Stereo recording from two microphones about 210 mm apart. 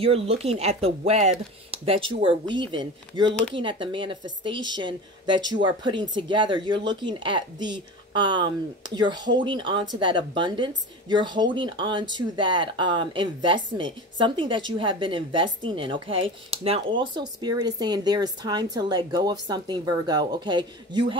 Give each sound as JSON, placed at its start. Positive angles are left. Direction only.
{"t": 0.0, "sound": "speech", "side_deg": -30}